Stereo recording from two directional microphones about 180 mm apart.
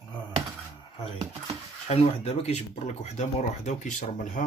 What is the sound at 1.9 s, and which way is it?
Speech, 35° left (ahead or behind).